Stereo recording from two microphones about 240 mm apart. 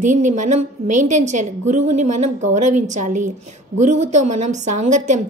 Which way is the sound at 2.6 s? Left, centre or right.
Right.